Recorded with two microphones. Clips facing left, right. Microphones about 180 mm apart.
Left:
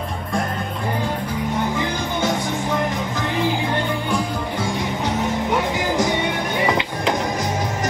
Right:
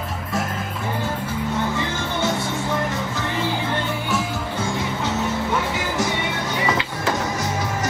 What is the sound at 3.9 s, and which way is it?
Music, 5° right (ahead or behind).